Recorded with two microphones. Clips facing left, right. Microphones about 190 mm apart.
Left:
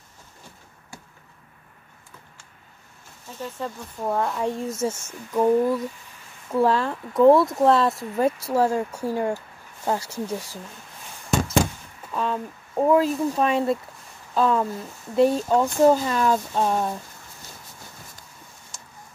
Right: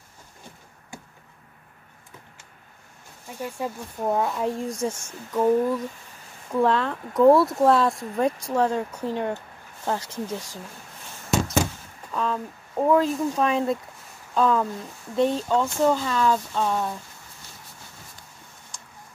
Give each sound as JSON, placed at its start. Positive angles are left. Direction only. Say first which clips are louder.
{"t": 3.3, "sound": "speech", "louder": "right 1 dB", "side_deg": -15}
{"t": 4.2, "sound": "speech", "louder": "even", "side_deg": -5}
{"t": 12.1, "sound": "speech", "louder": "even", "side_deg": 5}
{"t": 16.2, "sound": "a sound", "louder": "left 1 dB", "side_deg": 20}